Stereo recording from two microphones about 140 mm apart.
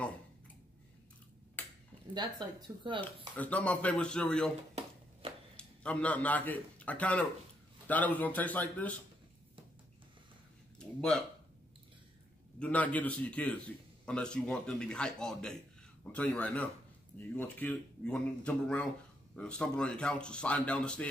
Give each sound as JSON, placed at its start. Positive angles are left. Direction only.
{"t": 1.6, "sound": "ping", "side_deg": 10}
{"t": 2.1, "sound": "speech", "side_deg": -35}
{"t": 3.3, "sound": "a man's voice", "side_deg": 10}
{"t": 5.2, "sound": "a sound", "side_deg": -40}
{"t": 5.6, "sound": "a man's voice", "side_deg": 10}
{"t": 10.8, "sound": "speech", "side_deg": 5}
{"t": 12.5, "sound": "a man's voice", "side_deg": 10}